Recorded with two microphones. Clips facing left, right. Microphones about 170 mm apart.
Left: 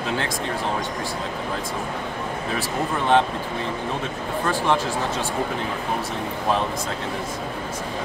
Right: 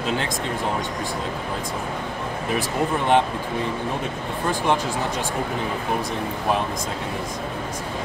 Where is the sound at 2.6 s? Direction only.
15° right (ahead or behind).